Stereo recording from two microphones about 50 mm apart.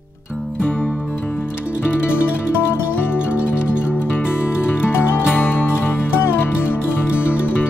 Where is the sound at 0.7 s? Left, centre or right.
Left.